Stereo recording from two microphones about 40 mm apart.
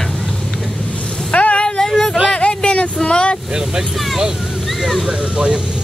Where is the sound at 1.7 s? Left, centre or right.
Centre.